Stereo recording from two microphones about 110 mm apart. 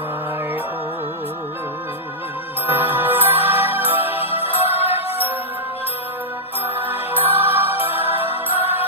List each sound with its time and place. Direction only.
2.6 s music: 20° right (ahead or behind)
6.7 s music: 20° right (ahead or behind)